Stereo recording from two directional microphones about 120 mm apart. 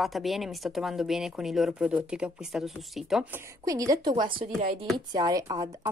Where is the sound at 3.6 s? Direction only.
30° right (ahead or behind).